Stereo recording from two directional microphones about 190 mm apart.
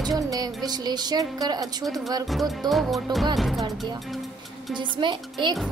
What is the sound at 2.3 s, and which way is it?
Speech, centre (ahead or behind).